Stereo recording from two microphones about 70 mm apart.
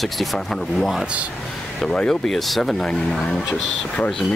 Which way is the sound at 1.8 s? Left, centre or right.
Centre.